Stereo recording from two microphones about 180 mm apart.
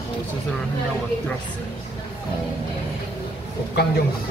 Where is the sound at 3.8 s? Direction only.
65° left (ahead or behind).